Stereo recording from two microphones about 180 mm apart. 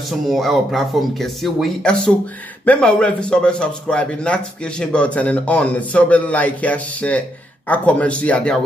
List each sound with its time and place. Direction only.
0.3 s speech: centre (ahead or behind)